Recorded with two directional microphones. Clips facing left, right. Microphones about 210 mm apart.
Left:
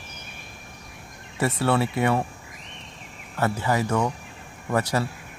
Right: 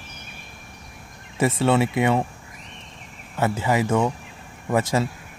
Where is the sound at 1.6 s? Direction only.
20° right (ahead or behind).